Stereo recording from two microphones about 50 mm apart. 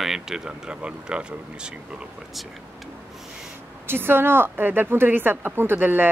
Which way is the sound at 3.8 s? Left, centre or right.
Right.